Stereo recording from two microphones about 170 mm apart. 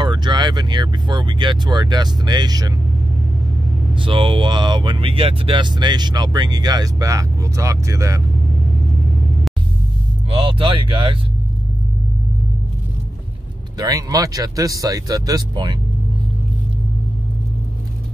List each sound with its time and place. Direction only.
0.0 s speech: 25° right (ahead or behind)
3.9 s speech: 30° right (ahead or behind)
10.4 s speech: 30° right (ahead or behind)
13.7 s speech: 20° right (ahead or behind)